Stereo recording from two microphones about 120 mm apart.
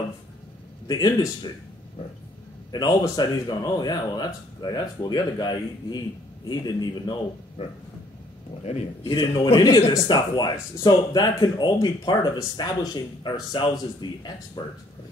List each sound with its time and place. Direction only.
0.8 s speech: 30° left (ahead or behind)
2.7 s speech: 30° left (ahead or behind)
8.6 s a man's voice: 60° left (ahead or behind)
9.6 s speech: 30° left (ahead or behind)